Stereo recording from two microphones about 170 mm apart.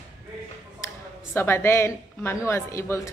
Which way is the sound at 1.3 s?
15° left (ahead or behind).